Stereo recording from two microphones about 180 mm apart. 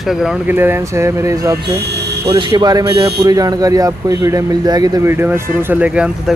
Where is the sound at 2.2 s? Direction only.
25° right (ahead or behind).